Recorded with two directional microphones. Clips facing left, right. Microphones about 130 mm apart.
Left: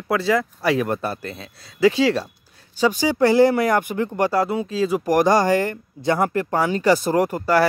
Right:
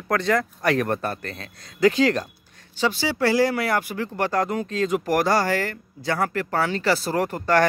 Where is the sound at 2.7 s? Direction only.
15° left (ahead or behind).